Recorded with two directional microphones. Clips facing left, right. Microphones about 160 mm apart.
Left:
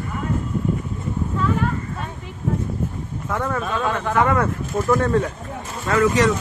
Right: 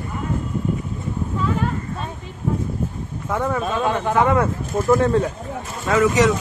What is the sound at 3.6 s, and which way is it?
Speech, 20° right (ahead or behind).